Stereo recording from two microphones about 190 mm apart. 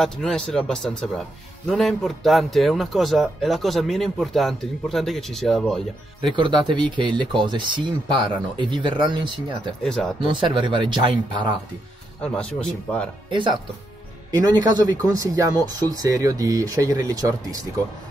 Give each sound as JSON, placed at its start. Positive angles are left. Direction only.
{"t": 0.0, "sound": "a man's voice", "side_deg": 5}
{"t": 6.3, "sound": "speech", "side_deg": -25}
{"t": 9.8, "sound": "a man's voice", "side_deg": 5}
{"t": 10.2, "sound": "speech", "side_deg": -25}
{"t": 12.2, "sound": "a man's voice", "side_deg": 5}
{"t": 13.3, "sound": "speech", "side_deg": -25}